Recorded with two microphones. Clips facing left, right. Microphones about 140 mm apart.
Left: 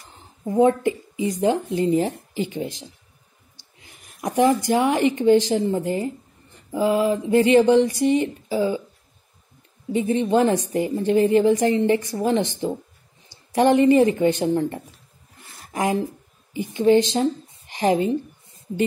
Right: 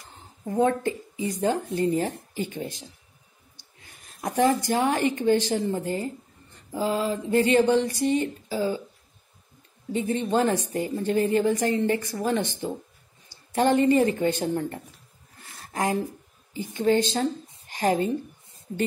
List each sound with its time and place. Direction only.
0.5 s a woman's voice: 20° left (ahead or behind)
9.9 s a woman's voice: 20° left (ahead or behind)
13.7 s a woman's voice: 20° left (ahead or behind)